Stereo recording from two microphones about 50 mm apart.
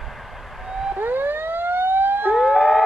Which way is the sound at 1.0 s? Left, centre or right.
Right.